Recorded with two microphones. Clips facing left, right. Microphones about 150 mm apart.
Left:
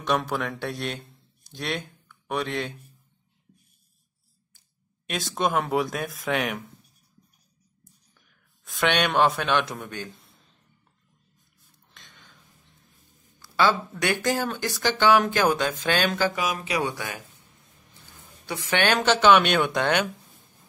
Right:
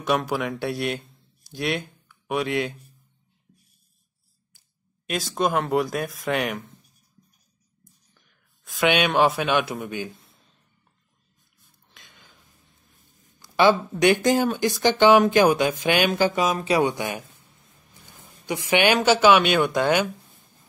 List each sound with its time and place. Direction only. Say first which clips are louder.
0.0 s speech: right 2 dB; 5° right (ahead or behind)
5.0 s speech: right 2 dB; centre (ahead or behind)
7.8 s speech: right 1 dB; centre (ahead or behind)
11.9 s a sound: even; 5° right (ahead or behind)
13.4 s speech: right 4 dB; 15° right (ahead or behind)
16.3 s speech: right 6 dB; 30° right (ahead or behind)
18.4 s a woman's voice: right 4 dB; 15° right (ahead or behind)